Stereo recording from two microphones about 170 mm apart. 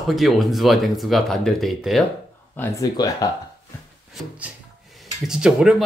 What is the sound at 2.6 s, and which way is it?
Speech, 20° left (ahead or behind).